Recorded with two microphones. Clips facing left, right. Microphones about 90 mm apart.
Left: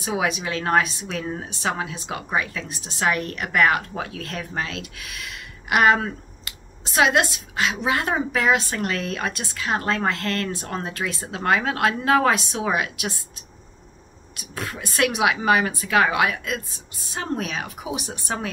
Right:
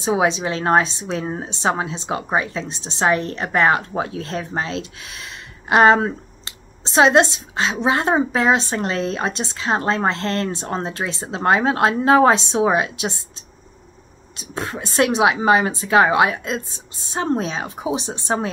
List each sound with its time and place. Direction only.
0.0 s a woman's voice: 30° right (ahead or behind)
14.3 s a woman's voice: 30° right (ahead or behind)